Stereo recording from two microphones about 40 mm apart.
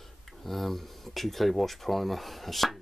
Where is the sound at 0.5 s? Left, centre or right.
Centre.